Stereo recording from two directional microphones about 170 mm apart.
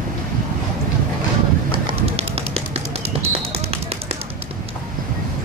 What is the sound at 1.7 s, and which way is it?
Bird, 35° right (ahead or behind).